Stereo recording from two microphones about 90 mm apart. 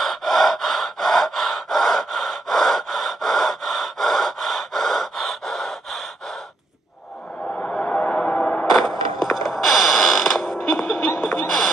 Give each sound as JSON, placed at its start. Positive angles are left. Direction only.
{"t": 0.0, "sound": "gasp", "side_deg": 0}
{"t": 7.6, "sound": "music", "side_deg": 10}
{"t": 9.2, "sound": "mechanisms", "side_deg": 0}
{"t": 10.7, "sound": "music", "side_deg": 0}
{"t": 11.2, "sound": "a sound", "side_deg": 5}